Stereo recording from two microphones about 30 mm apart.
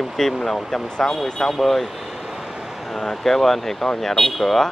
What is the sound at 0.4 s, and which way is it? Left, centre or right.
Speech, centre.